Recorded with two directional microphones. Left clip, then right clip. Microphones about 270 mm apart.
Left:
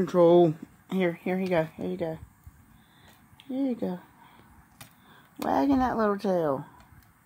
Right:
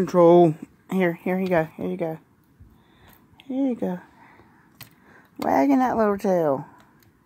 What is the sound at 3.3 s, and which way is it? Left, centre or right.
Speech, centre.